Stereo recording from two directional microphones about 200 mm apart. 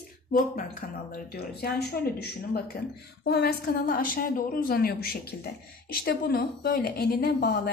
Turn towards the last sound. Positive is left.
turn(degrees=50)  # may be behind; listen again after turning